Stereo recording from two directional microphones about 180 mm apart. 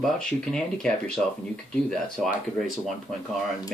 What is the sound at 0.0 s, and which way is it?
Speech, 5° left (ahead or behind).